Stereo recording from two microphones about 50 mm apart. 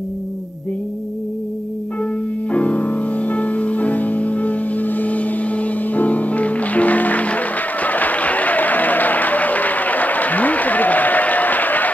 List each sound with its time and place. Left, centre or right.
2.5 s music: left